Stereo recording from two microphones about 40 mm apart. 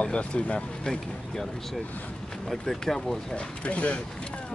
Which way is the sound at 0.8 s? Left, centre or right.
Centre.